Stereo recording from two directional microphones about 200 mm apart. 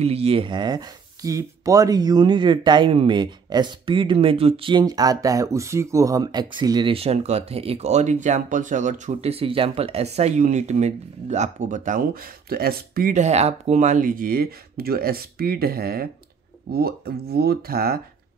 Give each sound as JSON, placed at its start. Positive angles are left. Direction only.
{"t": 0.0, "sound": "speech", "side_deg": -30}